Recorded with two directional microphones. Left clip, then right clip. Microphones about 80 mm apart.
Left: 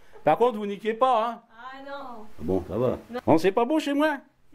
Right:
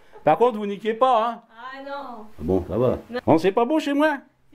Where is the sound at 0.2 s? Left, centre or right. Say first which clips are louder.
Right 3 dB; centre.